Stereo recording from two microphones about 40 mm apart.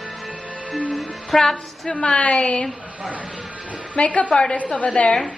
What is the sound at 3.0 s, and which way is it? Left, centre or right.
Speech, right.